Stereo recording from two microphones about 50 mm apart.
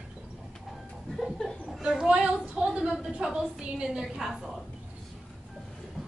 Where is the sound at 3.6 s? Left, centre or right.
Centre.